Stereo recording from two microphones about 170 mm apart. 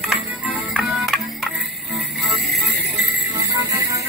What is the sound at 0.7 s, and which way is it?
Music, centre (ahead or behind).